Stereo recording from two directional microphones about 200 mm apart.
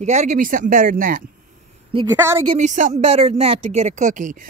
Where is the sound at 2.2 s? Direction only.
15° right (ahead or behind).